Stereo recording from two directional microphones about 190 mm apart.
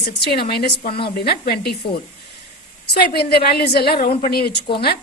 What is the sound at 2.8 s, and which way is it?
A woman's voice, 55° left (ahead or behind).